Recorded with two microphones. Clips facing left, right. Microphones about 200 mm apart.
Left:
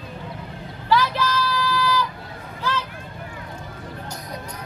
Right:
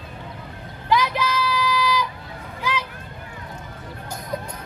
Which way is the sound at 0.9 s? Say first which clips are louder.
Even; 15° right (ahead or behind).